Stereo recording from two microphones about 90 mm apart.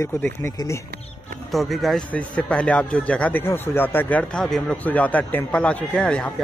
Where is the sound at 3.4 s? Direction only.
25° left (ahead or behind).